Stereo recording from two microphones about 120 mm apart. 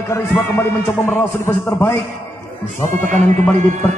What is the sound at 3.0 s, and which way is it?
Speech, 90° right.